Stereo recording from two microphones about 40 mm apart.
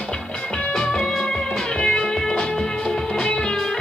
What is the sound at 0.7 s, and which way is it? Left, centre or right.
Music, centre.